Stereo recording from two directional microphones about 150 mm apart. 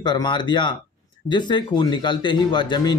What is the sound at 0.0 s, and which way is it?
A man's voice, 30° left (ahead or behind).